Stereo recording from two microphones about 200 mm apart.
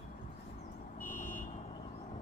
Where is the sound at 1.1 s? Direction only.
45° left (ahead or behind).